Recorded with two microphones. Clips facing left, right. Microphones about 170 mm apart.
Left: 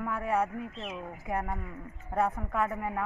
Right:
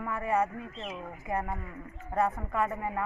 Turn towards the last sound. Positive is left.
turn(degrees=0)  # may be behind; listen again after turning